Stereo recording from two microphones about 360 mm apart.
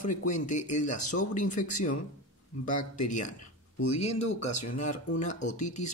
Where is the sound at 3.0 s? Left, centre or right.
Left.